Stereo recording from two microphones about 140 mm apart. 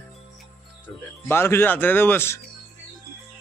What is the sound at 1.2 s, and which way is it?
Speech, 15° left (ahead or behind).